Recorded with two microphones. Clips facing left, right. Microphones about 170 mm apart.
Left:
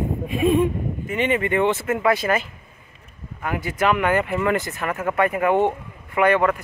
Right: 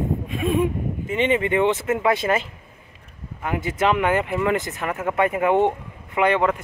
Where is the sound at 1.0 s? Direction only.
25° right (ahead or behind).